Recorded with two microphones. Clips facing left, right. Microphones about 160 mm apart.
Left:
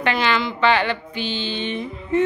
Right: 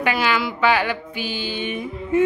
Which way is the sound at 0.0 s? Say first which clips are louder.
Even; 10° right (ahead or behind).